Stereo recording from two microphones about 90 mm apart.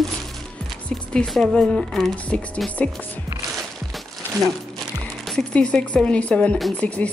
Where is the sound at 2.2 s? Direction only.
15° left (ahead or behind).